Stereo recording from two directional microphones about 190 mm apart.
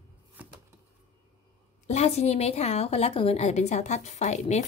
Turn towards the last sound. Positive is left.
turn(degrees=40)  # may be behind; listen again after turning